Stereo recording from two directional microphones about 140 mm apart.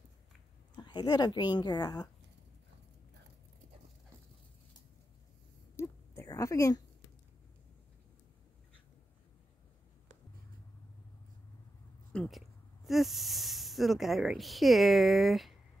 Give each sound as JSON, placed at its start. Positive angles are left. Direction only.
{"t": 0.7, "sound": "speech", "side_deg": 30}
{"t": 5.8, "sound": "a sound", "side_deg": 20}
{"t": 12.1, "sound": "speech", "side_deg": 5}